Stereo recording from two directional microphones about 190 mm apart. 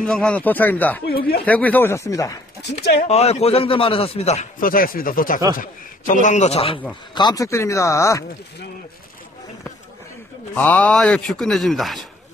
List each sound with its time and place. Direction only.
0.0 s speech: 5° left (ahead or behind)
1.0 s speech: 55° left (ahead or behind)
1.4 s speech: 10° left (ahead or behind)
2.8 s speech: 55° left (ahead or behind)
3.1 s speech: 35° left (ahead or behind)
7.2 s speech: 20° left (ahead or behind)
10.5 s speech: 5° left (ahead or behind)